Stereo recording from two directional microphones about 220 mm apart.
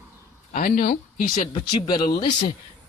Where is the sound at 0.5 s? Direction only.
40° left (ahead or behind).